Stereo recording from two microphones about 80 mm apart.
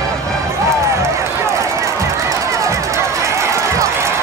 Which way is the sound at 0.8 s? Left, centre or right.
Right.